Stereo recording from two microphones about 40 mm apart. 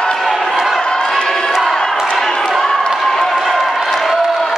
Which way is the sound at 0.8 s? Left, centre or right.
Centre.